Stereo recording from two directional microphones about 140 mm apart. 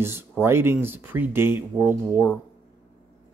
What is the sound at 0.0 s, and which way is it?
Speech, 15° right (ahead or behind).